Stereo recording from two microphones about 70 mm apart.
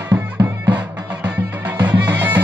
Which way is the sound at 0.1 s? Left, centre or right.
Right.